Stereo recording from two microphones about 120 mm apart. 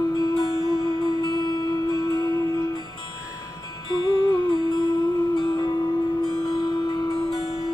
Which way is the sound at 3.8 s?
40° left (ahead or behind).